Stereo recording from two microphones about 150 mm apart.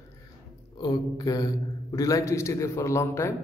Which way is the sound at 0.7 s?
25° left (ahead or behind).